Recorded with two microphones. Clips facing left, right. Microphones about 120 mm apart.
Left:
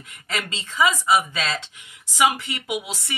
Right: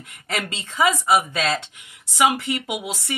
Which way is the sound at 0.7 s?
55° right (ahead or behind).